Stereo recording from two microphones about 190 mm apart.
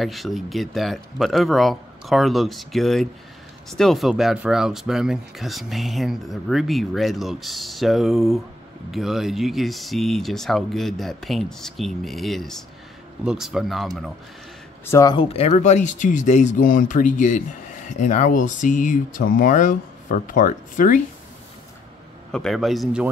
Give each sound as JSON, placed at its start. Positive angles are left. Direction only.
{"t": 0.0, "sound": "speech", "side_deg": 0}
{"t": 14.9, "sound": "speech", "side_deg": 20}
{"t": 22.3, "sound": "speech", "side_deg": 0}